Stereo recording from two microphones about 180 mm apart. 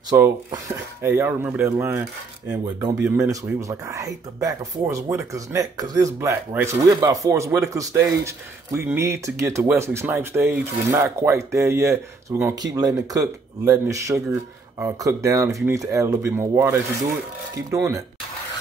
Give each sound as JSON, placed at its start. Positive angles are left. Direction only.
{"t": 0.1, "sound": "speech", "side_deg": -15}